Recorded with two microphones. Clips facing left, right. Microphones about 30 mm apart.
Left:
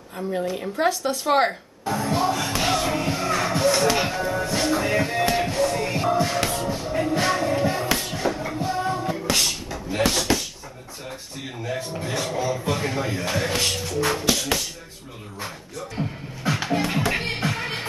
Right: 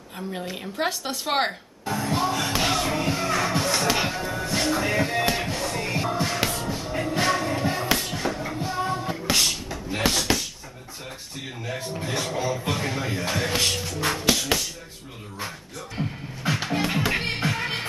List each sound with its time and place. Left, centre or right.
0.6 s speech: centre
1.9 s music: centre
9.1 s a sound: centre
11.1 s speech: centre
12.1 s music: centre
16.0 s music: centre